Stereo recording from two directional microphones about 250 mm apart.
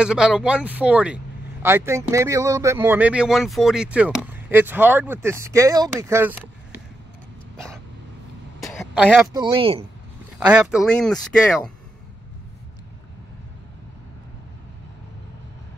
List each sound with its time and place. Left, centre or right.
0.0 s speech: centre
8.6 s throat clearing: centre
9.3 s speech: centre
10.4 s speech: centre